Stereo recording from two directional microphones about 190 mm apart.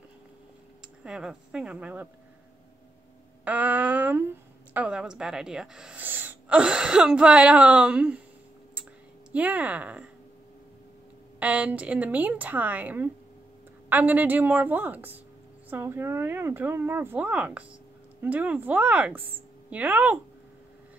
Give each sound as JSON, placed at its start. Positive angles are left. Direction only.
{"t": 1.0, "sound": "speech", "side_deg": -5}
{"t": 3.4, "sound": "a sound", "side_deg": -10}
{"t": 4.7, "sound": "speech", "side_deg": -5}
{"t": 9.3, "sound": "speech", "side_deg": -10}
{"t": 11.3, "sound": "speech", "side_deg": -5}